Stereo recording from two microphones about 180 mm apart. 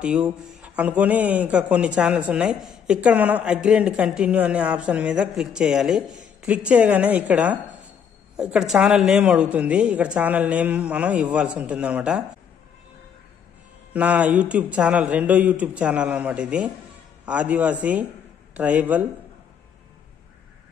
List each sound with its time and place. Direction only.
0.0 s a man's voice: 5° right (ahead or behind)
13.9 s a man's voice: 10° right (ahead or behind)